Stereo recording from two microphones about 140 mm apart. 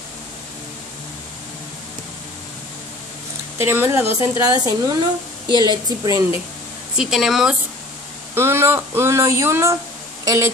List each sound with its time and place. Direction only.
3.5 s speech: 15° right (ahead or behind)
7.0 s speech: 5° right (ahead or behind)
8.4 s speech: 15° right (ahead or behind)